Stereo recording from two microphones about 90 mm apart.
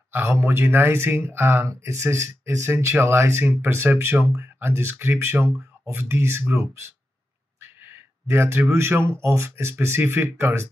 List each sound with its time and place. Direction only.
0.1 s speech: 30° right (ahead or behind)